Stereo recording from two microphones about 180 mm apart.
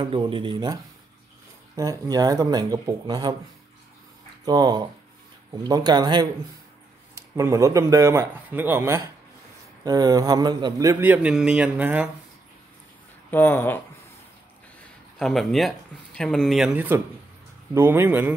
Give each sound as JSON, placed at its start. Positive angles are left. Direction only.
{"t": 0.0, "sound": "speech", "side_deg": -30}
{"t": 1.8, "sound": "speech", "side_deg": -20}
{"t": 4.5, "sound": "a man's voice", "side_deg": -25}
{"t": 13.3, "sound": "speech", "side_deg": 10}
{"t": 15.1, "sound": "a man's voice", "side_deg": 0}